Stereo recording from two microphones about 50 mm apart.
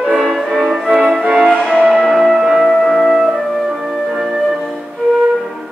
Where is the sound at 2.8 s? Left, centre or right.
Centre.